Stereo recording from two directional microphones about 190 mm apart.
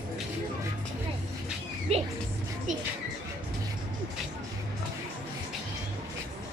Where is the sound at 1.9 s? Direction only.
35° right (ahead or behind).